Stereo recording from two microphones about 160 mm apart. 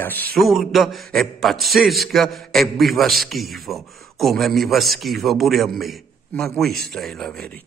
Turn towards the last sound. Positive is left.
turn(degrees=5)  # may be behind; listen again after turning